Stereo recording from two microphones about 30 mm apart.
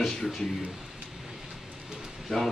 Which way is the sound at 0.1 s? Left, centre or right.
Centre.